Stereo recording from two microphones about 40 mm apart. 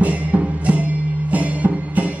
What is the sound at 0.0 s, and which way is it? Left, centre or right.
Music, right.